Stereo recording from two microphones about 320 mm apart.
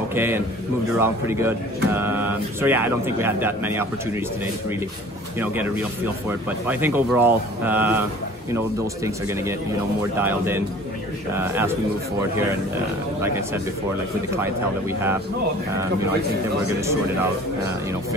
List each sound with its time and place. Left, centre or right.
0.1 s a man's voice: centre
5.4 s speech: centre
14.3 s speech: centre
16.8 s speech: centre